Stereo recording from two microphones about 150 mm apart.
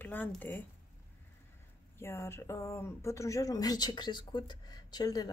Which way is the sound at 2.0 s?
15° left (ahead or behind).